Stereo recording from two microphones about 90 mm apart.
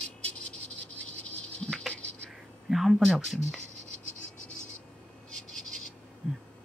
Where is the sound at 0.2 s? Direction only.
15° left (ahead or behind).